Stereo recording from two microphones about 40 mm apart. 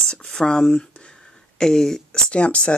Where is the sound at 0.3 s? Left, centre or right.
Centre.